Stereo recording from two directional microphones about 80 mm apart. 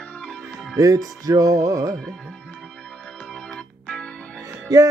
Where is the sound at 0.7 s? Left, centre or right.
Right.